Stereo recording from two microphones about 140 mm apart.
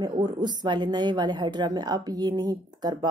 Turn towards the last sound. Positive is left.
turn(degrees=-30)  # may be behind; listen again after turning